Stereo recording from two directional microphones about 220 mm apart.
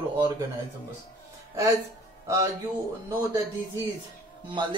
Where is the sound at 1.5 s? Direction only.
15° right (ahead or behind).